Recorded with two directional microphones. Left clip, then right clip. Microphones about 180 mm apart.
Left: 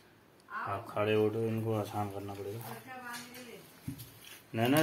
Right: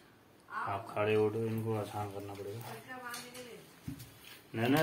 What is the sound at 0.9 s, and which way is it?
Speech, 35° left (ahead or behind).